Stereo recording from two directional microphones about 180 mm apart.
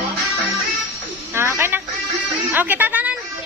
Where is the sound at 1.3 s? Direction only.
15° right (ahead or behind).